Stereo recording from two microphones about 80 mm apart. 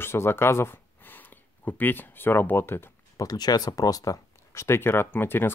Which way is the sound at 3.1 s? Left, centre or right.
Left.